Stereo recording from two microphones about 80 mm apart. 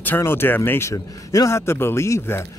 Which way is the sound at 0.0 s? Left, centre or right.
Left.